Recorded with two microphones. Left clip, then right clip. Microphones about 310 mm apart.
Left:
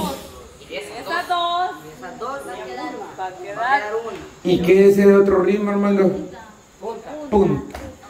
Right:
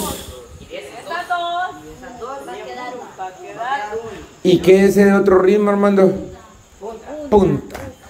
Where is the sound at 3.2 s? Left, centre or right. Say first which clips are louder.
Left 1 dB; left.